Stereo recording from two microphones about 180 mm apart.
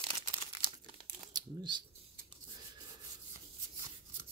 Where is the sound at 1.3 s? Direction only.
25° right (ahead or behind).